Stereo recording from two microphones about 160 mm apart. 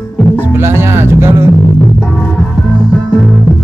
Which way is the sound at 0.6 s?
15° right (ahead or behind).